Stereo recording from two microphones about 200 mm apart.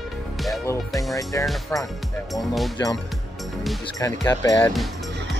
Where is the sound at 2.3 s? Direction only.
Centre (ahead or behind).